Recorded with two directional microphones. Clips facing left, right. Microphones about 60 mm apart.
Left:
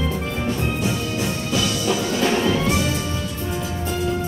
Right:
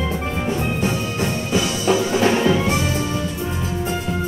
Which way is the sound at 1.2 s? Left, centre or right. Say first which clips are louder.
Right 4 dB; right.